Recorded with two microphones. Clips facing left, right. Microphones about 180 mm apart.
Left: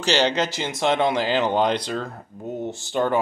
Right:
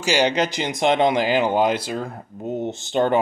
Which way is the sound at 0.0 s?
10° right (ahead or behind).